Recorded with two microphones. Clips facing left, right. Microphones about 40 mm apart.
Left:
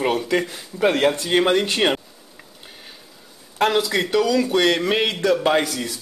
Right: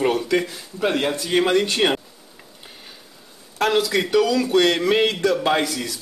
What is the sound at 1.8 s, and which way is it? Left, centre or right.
Speech, centre.